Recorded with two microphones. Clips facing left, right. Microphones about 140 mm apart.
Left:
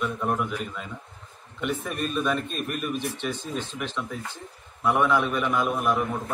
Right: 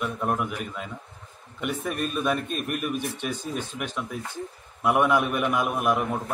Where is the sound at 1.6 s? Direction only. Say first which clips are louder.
Even; 5° right (ahead or behind).